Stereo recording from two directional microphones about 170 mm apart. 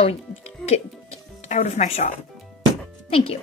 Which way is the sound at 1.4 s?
40° left (ahead or behind).